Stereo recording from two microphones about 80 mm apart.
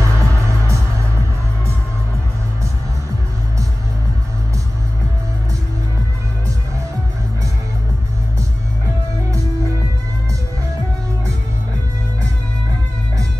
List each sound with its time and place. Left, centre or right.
0.0 s music: right